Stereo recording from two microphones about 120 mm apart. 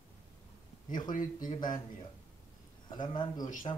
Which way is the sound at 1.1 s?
90° left.